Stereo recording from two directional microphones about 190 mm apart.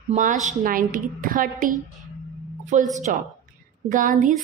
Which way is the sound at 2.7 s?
40° right (ahead or behind).